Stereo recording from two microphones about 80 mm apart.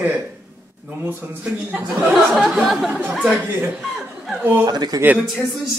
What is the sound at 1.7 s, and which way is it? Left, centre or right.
Speech, centre.